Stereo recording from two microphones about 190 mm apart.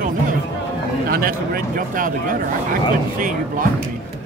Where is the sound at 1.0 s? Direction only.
50° right (ahead or behind).